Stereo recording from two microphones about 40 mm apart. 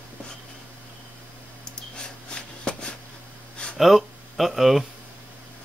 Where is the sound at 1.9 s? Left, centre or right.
Left.